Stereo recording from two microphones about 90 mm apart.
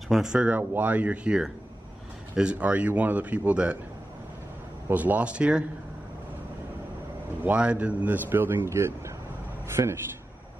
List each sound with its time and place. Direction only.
0.1 s speech: 5° right (ahead or behind)
4.8 s speech: 20° right (ahead or behind)
7.4 s a man's voice: 15° right (ahead or behind)